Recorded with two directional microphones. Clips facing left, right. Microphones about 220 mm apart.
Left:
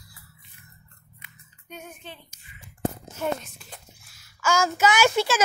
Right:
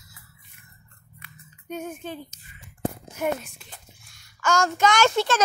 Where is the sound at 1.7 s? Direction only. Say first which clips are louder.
Right 9 dB; 45° right (ahead or behind).